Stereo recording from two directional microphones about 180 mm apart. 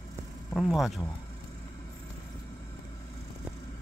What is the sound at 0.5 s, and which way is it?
Speech, centre (ahead or behind).